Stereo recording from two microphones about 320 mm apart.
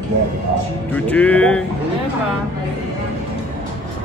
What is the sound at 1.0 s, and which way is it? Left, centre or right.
Speech, centre.